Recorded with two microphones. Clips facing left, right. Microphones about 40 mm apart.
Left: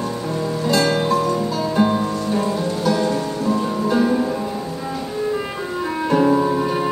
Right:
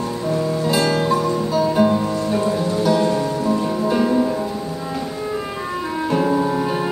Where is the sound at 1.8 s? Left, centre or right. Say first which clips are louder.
Even; centre.